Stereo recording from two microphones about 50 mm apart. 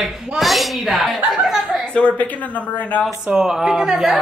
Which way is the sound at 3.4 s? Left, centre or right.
Centre.